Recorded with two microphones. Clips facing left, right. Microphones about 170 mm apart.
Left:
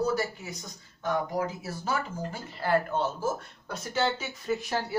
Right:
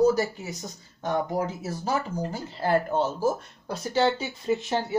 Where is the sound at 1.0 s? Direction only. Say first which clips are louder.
Right 2 dB; 35° right (ahead or behind).